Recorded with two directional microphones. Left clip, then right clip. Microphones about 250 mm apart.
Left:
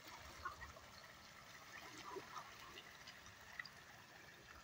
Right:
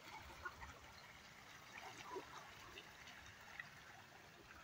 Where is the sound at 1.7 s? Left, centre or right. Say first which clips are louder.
Right 1 dB; centre.